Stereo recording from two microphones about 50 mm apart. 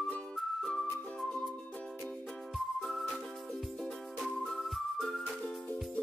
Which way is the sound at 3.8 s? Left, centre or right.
Centre.